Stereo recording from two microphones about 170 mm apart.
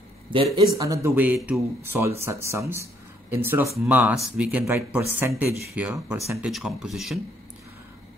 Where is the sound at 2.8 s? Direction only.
15° right (ahead or behind).